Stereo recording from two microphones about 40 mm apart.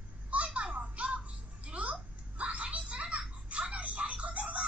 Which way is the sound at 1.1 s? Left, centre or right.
Right.